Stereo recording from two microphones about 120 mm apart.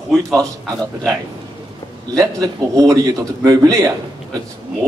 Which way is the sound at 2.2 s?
25° right (ahead or behind).